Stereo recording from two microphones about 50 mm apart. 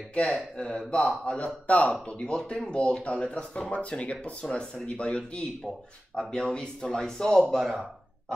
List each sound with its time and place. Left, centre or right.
0.6 s speech: centre